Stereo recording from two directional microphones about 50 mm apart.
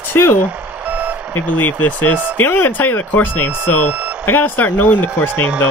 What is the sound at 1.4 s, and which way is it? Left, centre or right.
Speech, left.